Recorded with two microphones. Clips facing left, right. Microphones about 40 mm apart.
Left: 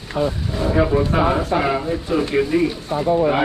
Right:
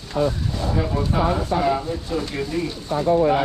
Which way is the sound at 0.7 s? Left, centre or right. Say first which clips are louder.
Left 6 dB; left.